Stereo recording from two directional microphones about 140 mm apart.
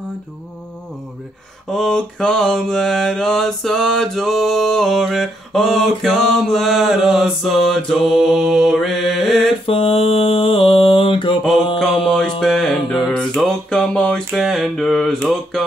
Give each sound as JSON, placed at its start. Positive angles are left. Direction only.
{"t": 1.7, "sound": "mantra", "side_deg": 5}
{"t": 9.7, "sound": "mantra", "side_deg": 40}
{"t": 12.0, "sound": "mantra", "side_deg": 0}